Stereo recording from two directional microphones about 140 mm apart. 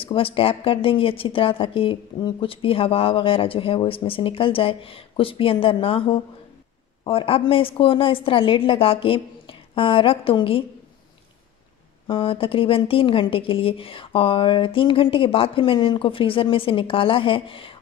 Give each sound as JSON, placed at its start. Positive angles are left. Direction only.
{"t": 0.0, "sound": "speech", "side_deg": 40}
{"t": 12.1, "sound": "speech", "side_deg": 35}